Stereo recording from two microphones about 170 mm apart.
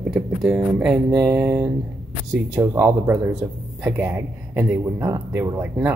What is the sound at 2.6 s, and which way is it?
Speech, 15° right (ahead or behind).